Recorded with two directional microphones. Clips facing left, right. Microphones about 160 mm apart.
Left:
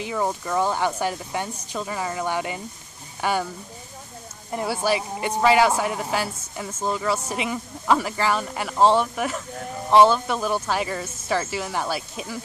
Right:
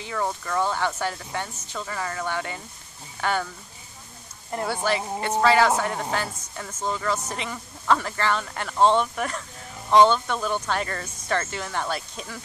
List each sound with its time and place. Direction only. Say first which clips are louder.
0.0 s speech: left 3 dB; 15° left (ahead or behind)
4.5 s speech: left 2 dB; 5° left (ahead or behind)